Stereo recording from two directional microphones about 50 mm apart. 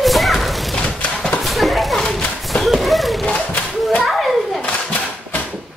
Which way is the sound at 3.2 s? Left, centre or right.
Left.